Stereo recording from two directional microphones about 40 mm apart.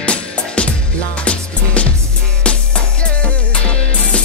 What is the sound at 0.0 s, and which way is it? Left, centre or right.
Music, left.